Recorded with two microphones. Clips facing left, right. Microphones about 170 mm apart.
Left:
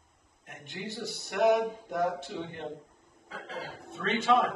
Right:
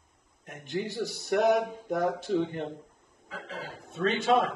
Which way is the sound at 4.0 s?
40° right (ahead or behind).